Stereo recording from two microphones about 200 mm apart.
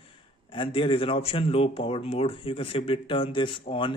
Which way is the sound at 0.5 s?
25° left (ahead or behind).